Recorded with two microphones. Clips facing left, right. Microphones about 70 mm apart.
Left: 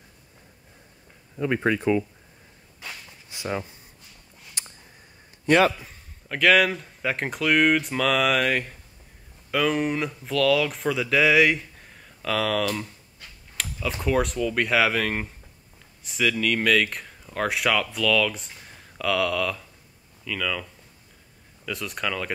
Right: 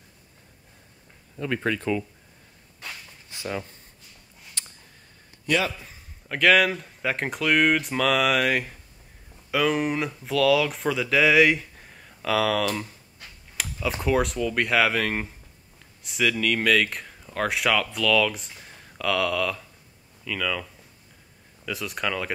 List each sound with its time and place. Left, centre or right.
1.3 s speech: centre
3.3 s a sound: centre
5.8 s speech: centre
21.6 s speech: centre